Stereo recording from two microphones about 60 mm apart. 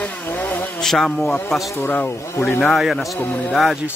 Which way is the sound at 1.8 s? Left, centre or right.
Left.